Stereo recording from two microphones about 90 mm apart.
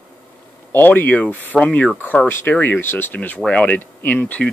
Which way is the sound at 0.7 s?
20° left (ahead or behind).